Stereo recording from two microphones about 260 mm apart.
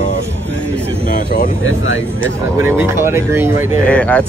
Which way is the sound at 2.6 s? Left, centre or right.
Centre.